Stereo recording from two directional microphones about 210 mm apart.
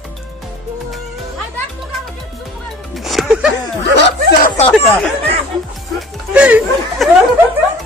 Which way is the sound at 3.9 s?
55° left (ahead or behind).